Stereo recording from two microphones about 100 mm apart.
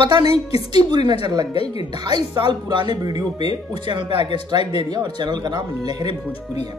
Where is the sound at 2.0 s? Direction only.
45° right (ahead or behind).